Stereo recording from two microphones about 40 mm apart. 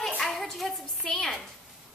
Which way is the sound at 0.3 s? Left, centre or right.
Centre.